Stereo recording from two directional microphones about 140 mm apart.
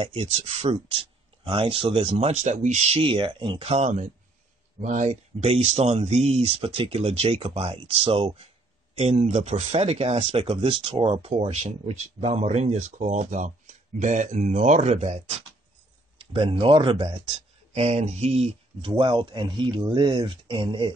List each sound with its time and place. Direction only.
0.0 s speech: 45° right (ahead or behind)
3.0 s speech: 40° right (ahead or behind)
16.3 s speech: 40° right (ahead or behind)
17.7 s speech: 50° right (ahead or behind)